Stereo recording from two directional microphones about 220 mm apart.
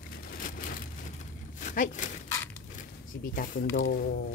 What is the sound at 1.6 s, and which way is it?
Speech, 35° left (ahead or behind).